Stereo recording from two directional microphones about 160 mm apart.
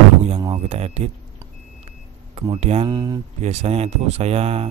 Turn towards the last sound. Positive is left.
turn(degrees=-40)  # may be behind; listen again after turning